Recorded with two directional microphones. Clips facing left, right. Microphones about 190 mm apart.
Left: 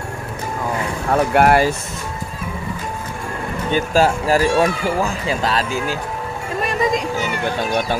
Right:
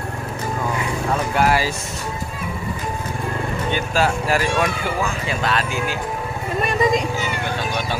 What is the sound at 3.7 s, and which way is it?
Speech, 40° left (ahead or behind).